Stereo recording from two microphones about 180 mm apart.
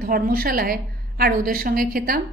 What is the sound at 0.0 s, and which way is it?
A woman's voice, 55° right (ahead or behind).